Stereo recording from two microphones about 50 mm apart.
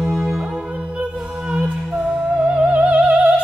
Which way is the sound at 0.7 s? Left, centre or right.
Right.